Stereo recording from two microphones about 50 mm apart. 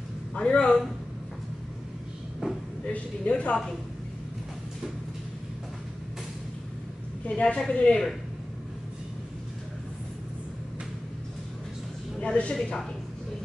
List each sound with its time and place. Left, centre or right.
0.3 s a woman's voice: left
2.4 s a sound: centre
2.9 s a woman's voice: left
7.2 s a woman's voice: left
12.2 s a woman's voice: left